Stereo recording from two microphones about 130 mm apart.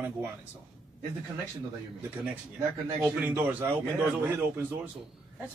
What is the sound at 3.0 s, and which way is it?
A man's voice, 15° right (ahead or behind).